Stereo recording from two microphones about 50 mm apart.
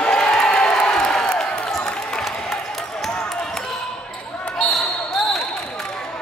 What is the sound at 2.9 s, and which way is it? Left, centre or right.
Basketball bounce, centre.